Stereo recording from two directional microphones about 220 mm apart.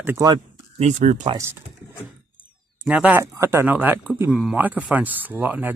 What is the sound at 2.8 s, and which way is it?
Speech, 5° right (ahead or behind).